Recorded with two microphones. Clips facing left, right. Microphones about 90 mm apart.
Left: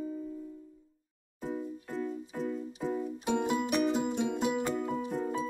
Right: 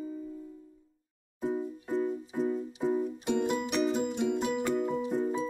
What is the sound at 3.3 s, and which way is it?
Music, 10° left (ahead or behind).